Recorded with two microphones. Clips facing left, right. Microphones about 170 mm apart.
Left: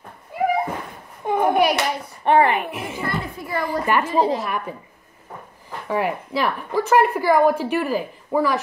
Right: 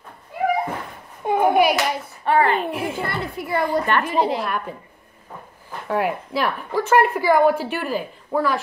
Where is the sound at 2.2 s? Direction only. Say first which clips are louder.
Left 2 dB; 20° left (ahead or behind).